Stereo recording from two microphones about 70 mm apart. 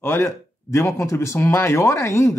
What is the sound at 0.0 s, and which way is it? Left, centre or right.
Speech, left.